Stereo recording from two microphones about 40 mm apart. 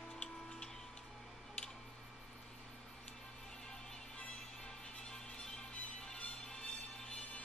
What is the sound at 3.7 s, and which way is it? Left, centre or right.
Music, left.